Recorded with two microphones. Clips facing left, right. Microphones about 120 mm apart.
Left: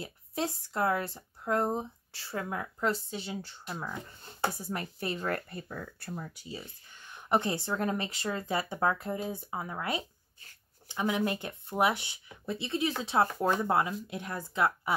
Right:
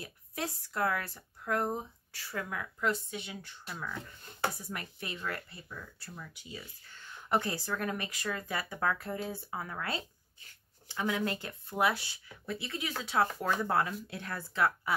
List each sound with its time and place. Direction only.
0.0 s speech: 25° left (ahead or behind)
6.6 s speech: 15° left (ahead or behind)